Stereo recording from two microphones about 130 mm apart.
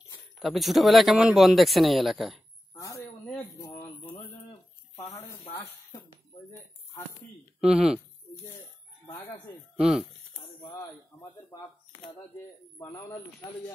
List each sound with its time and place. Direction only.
0.4 s speech: centre (ahead or behind)
2.7 s a sound: 20° left (ahead or behind)
7.6 s speech: 5° right (ahead or behind)
9.8 s speech: 5° right (ahead or behind)
12.9 s speech: 30° left (ahead or behind)